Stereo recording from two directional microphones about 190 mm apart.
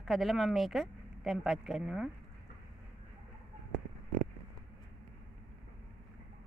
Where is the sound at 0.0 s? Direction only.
Centre (ahead or behind).